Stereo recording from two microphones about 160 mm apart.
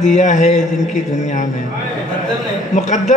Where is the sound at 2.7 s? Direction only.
50° left (ahead or behind).